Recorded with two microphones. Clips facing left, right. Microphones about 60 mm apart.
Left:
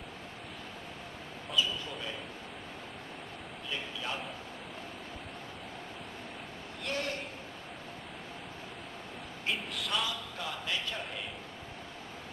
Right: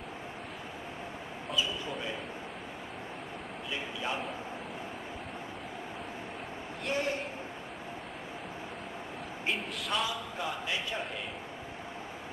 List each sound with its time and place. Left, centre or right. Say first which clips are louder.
1.6 s speech: left 1 dB; centre
3.7 s speech: right 2 dB; centre
6.9 s a man's voice: right 4 dB; centre
9.5 s speech: right 1 dB; centre
10.0 s speech: right 3 dB; centre